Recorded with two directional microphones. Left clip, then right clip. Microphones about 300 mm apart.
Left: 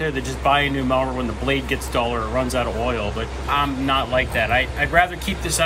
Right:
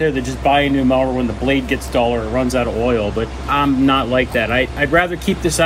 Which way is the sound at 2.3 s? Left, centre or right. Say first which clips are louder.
Right 4 dB; centre.